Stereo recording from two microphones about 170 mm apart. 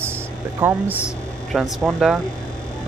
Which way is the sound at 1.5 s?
Centre (ahead or behind).